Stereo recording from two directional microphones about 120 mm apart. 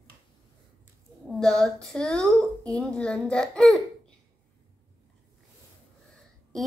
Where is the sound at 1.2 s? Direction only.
5° left (ahead or behind).